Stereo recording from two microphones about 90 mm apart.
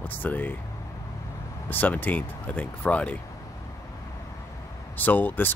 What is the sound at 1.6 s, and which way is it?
Speech, 20° left (ahead or behind).